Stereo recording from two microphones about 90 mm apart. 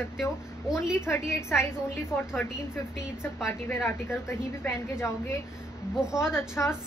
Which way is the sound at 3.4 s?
30° left (ahead or behind).